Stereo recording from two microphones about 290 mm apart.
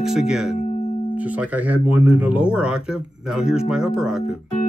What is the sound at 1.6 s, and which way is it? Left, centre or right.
Speech, centre.